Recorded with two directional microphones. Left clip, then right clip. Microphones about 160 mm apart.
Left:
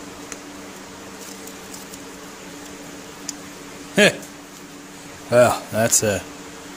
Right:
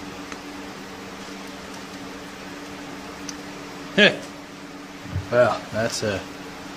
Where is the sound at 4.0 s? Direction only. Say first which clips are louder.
Left 1 dB; 90° left.